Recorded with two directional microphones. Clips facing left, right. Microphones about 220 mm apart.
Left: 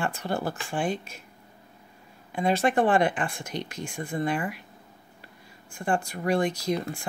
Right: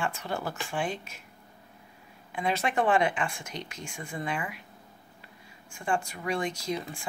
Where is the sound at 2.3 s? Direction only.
40° left (ahead or behind).